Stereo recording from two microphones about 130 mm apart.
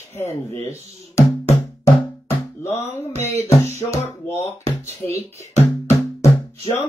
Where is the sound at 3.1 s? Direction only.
55° right (ahead or behind).